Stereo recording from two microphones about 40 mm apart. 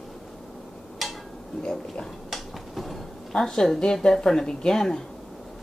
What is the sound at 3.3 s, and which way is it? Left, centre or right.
Speech, centre.